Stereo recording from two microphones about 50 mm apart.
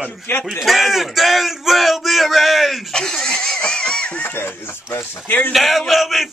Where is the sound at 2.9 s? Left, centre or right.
Centre.